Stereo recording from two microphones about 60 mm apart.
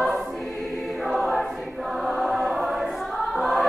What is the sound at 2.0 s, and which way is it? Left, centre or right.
Choir, centre.